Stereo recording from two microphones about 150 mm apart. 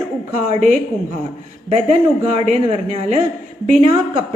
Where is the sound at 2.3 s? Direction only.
45° right (ahead or behind).